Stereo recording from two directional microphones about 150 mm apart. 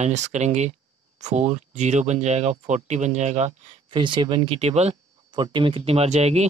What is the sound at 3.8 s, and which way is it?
Speech, 30° right (ahead or behind).